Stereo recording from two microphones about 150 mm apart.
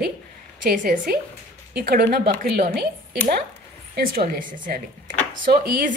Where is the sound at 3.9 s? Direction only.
85° right.